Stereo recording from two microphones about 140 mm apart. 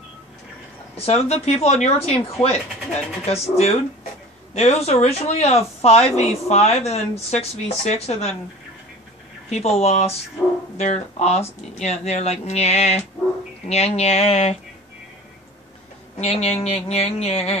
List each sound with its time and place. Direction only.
0.9 s speech: 45° left (ahead or behind)
3.3 s speech: 45° left (ahead or behind)
9.5 s speech: 50° left (ahead or behind)
16.2 s speech: 50° left (ahead or behind)